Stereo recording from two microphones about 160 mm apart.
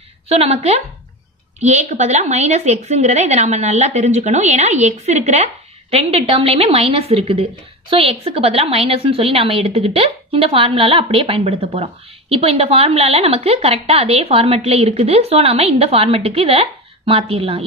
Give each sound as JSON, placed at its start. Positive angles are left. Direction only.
{"t": 0.3, "sound": "a woman's voice", "side_deg": -40}